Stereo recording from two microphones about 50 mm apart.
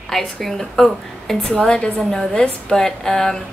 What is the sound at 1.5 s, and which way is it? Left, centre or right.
A woman's voice, centre.